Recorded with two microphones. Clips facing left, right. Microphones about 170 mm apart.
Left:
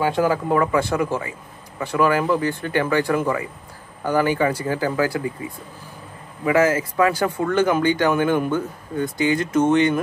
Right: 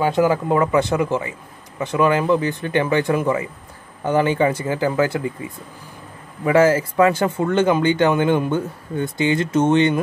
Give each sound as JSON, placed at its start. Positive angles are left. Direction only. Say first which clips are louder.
{"t": 0.0, "sound": "speech", "louder": "right 2 dB", "side_deg": -20}
{"t": 6.4, "sound": "speech", "louder": "right 3 dB", "side_deg": -30}